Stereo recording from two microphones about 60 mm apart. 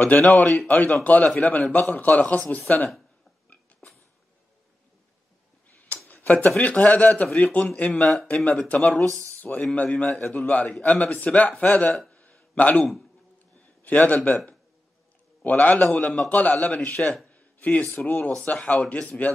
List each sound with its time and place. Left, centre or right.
0.0 s speech: left
6.0 s speech: left
10.0 s speech: centre
12.1 s a sound: left
15.4 s speech: left
17.3 s a sound: left
17.9 s speech: left